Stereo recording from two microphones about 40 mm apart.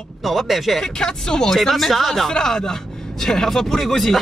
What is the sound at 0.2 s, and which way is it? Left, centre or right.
Speech, centre.